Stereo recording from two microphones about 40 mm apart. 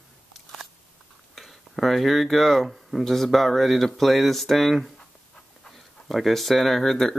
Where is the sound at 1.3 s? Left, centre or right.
Centre.